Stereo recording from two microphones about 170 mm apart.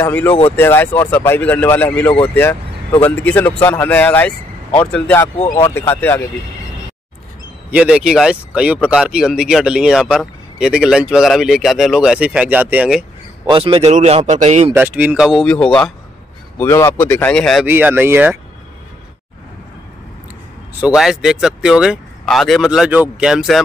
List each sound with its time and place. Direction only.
0.0 s speech: 10° left (ahead or behind)
7.7 s speech: 5° right (ahead or behind)
13.5 s a man's voice: 30° right (ahead or behind)
14.7 s speech: 10° right (ahead or behind)
17.6 s speech: 10° right (ahead or behind)
20.8 s speech: 5° right (ahead or behind)